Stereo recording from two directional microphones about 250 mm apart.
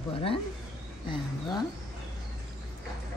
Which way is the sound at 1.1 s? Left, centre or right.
Centre.